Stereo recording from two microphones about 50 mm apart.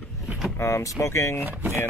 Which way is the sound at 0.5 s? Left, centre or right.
Left.